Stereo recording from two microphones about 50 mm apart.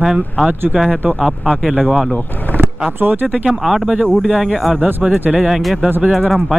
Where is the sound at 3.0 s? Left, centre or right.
Right.